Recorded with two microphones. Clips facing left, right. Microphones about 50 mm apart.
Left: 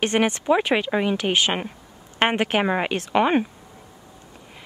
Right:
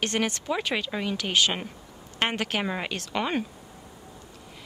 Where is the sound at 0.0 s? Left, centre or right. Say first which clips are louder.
Left 6 dB; left.